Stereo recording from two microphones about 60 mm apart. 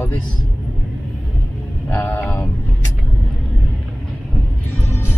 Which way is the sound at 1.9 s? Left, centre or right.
Left.